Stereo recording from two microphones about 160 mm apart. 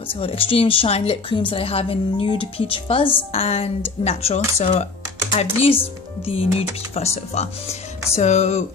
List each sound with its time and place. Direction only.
0.1 s a woman's voice: 35° left (ahead or behind)
7.0 s speech: 40° left (ahead or behind)